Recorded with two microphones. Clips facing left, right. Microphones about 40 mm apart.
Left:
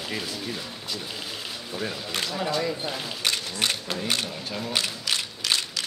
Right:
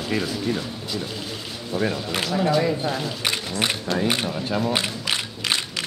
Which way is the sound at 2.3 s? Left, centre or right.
Centre.